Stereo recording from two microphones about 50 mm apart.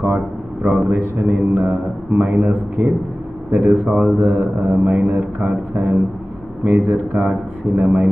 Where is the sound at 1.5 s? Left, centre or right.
Right.